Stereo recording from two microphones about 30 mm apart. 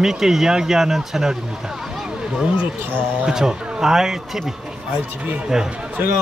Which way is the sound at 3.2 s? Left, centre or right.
Right.